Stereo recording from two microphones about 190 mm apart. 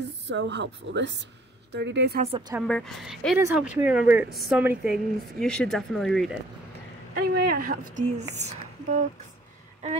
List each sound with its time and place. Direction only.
0.0 s a woman's voice: 65° right (ahead or behind)
2.6 s a woman's voice: centre (ahead or behind)
3.3 s a woman's voice: 10° right (ahead or behind)
7.2 s a woman's voice: 50° right (ahead or behind)